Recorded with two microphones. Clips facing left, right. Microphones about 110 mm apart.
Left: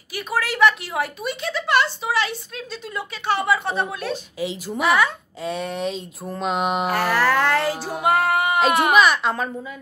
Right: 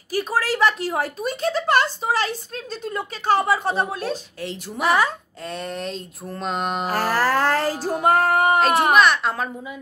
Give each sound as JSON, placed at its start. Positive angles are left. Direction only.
{"t": 0.1, "sound": "speech", "side_deg": -35}
{"t": 4.4, "sound": "mantra", "side_deg": 5}
{"t": 4.8, "sound": "speech", "side_deg": -35}
{"t": 5.4, "sound": "mantra", "side_deg": 5}
{"t": 6.9, "sound": "speech", "side_deg": -40}
{"t": 7.8, "sound": "music", "side_deg": -40}
{"t": 8.5, "sound": "speech", "side_deg": 0}
{"t": 8.9, "sound": "mantra", "side_deg": 0}